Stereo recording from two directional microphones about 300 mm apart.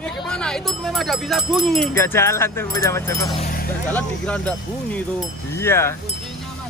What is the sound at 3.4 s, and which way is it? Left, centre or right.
Vehicle, left.